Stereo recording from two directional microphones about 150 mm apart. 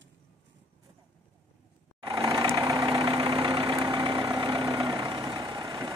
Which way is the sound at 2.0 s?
35° right (ahead or behind).